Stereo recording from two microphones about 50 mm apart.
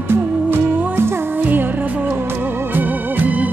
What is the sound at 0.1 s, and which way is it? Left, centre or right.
Music, right.